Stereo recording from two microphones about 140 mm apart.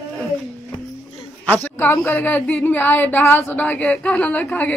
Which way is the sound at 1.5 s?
15° left (ahead or behind).